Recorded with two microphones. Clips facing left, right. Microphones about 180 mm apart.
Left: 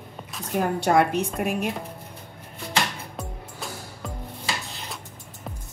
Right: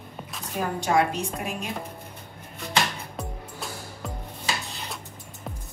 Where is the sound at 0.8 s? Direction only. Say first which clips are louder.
Left 2 dB; 60° left (ahead or behind).